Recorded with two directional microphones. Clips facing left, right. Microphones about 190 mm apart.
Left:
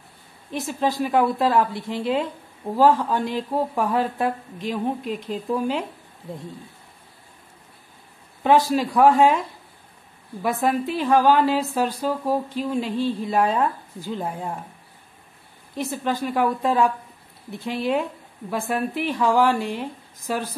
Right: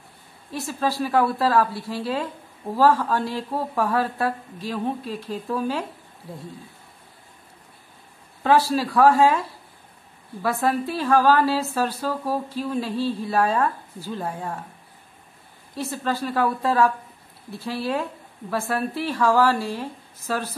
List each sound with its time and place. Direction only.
0.5 s a woman's voice: 20° left (ahead or behind)
8.5 s a woman's voice: 20° left (ahead or behind)
10.4 s a woman's voice: 15° left (ahead or behind)
15.7 s a woman's voice: 15° left (ahead or behind)